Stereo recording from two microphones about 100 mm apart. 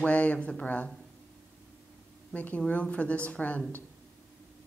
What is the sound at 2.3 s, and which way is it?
Speech, 15° left (ahead or behind).